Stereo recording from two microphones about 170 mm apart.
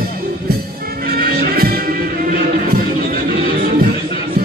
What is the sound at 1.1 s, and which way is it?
Music, 65° right (ahead or behind).